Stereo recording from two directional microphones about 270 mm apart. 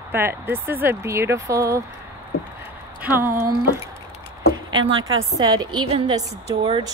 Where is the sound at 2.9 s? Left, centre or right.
Centre.